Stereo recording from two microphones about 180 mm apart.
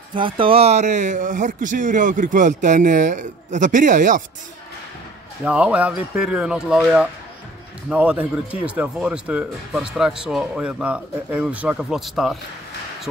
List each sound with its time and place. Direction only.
0.1 s speech: 30° right (ahead or behind); by 4.2 s 45° right (ahead or behind)
5.4 s speech: 5° right (ahead or behind)